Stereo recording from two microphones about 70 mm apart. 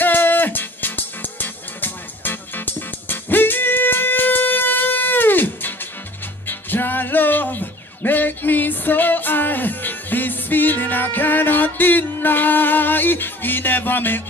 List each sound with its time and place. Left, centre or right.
0.0 s music: left